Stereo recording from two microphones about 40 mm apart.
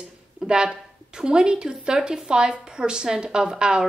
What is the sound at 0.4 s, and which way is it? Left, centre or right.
Speech, centre.